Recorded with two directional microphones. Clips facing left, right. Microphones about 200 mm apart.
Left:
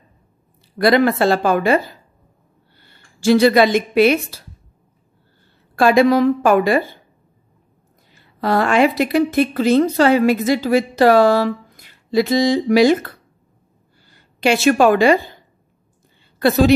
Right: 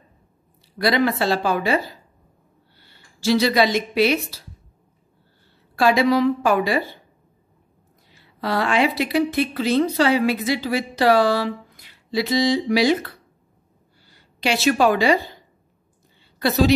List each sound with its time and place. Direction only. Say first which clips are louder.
0.7 s a woman's voice: left 5 dB; 50° left (ahead or behind)
5.8 s a woman's voice: left 4 dB; 50° left (ahead or behind)
8.1 s a woman's voice: left 6 dB; 50° left (ahead or behind)
16.3 s a woman's voice: left 4 dB; 55° left (ahead or behind)